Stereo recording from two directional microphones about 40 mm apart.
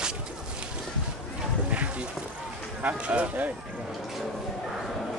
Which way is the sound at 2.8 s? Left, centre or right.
Right.